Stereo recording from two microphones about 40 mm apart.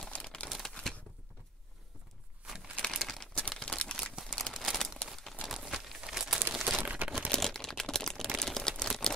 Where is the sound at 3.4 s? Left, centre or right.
Left.